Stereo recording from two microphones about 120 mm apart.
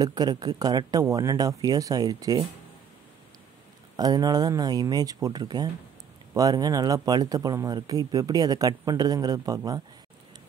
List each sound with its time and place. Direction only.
0.0 s speech: 30° right (ahead or behind)
3.9 s speech: 35° right (ahead or behind)